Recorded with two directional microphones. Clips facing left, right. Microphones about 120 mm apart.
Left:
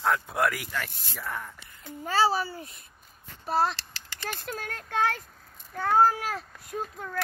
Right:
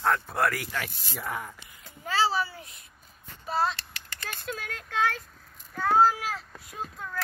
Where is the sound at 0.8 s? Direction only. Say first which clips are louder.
Even; 10° right (ahead or behind).